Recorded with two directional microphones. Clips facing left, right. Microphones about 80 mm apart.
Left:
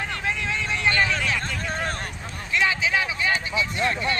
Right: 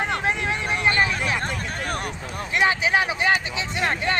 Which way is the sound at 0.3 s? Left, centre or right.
Right.